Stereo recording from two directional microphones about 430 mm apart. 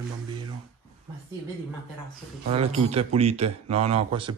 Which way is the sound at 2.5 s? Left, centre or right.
Centre.